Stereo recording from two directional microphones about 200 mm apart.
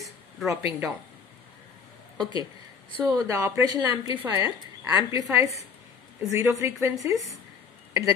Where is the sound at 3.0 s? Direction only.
15° right (ahead or behind).